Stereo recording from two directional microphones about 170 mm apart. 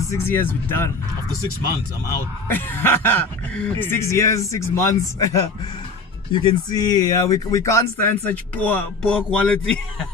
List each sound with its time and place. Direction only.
0.1 s speech: 10° left (ahead or behind)
2.4 s speech: 10° left (ahead or behind)